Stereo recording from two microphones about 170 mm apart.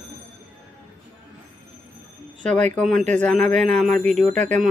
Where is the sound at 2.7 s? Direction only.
Centre (ahead or behind).